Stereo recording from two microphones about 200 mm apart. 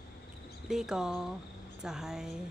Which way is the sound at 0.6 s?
5° right (ahead or behind).